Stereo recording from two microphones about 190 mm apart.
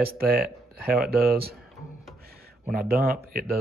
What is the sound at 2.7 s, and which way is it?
Speech, 50° right (ahead or behind).